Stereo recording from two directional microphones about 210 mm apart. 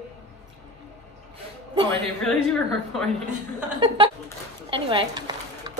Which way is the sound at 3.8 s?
20° right (ahead or behind).